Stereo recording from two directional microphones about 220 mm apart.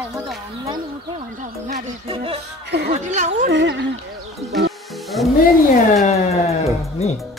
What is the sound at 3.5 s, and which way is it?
Speech, 55° right (ahead or behind).